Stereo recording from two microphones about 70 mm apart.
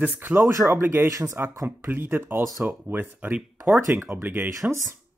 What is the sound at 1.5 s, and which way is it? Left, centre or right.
Speech, right.